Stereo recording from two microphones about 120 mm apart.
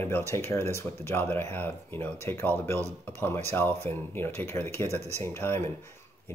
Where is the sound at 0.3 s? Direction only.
20° left (ahead or behind).